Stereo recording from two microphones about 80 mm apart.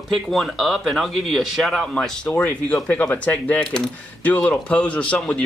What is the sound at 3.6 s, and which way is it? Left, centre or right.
Speech, centre.